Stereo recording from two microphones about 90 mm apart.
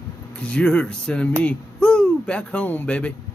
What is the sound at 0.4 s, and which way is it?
Speech, 10° left (ahead or behind).